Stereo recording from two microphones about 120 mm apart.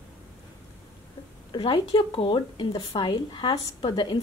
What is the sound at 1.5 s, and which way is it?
Speech, 45° left (ahead or behind).